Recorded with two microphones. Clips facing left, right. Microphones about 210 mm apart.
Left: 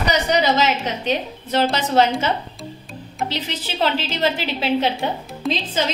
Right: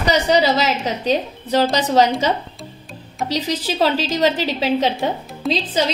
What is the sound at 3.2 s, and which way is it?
A woman's voice, 40° right (ahead or behind).